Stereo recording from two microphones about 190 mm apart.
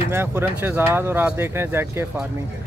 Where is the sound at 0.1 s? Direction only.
10° right (ahead or behind).